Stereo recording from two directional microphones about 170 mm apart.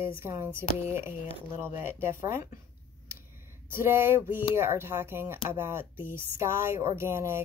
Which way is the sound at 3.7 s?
15° right (ahead or behind).